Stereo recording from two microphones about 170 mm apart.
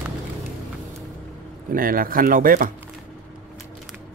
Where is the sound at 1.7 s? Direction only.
55° right (ahead or behind).